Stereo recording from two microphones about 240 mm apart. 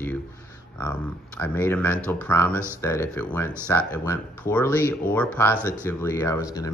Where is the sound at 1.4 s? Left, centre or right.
Centre.